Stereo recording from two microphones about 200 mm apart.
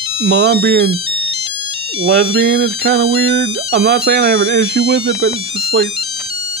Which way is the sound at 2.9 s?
55° right (ahead or behind).